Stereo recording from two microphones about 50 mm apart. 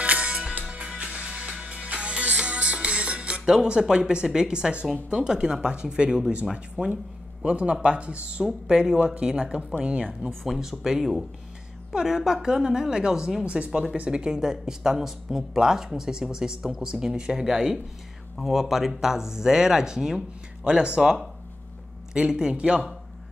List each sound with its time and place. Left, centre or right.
0.0 s music: right
3.8 s speech: centre
7.4 s speech: right
10.4 s speech: centre